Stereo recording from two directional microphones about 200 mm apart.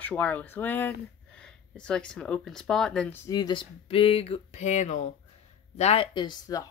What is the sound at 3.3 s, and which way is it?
Speech, 20° left (ahead or behind).